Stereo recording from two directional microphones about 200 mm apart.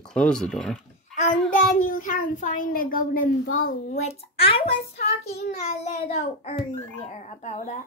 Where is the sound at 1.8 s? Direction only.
40° left (ahead or behind).